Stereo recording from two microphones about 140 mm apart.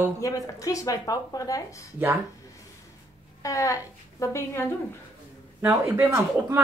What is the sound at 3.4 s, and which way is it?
A woman's voice, 25° left (ahead or behind).